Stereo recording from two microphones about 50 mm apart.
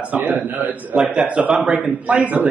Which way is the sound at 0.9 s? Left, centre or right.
Centre.